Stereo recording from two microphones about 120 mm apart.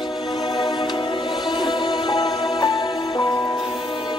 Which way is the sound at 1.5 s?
35° left (ahead or behind).